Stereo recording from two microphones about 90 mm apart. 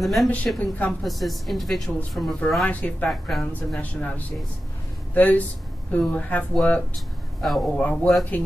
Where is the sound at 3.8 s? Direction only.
15° left (ahead or behind).